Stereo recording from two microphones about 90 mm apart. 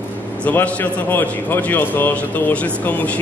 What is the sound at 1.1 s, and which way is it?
A man's voice, 20° left (ahead or behind).